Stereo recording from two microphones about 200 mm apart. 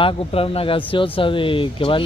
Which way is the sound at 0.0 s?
30° left (ahead or behind).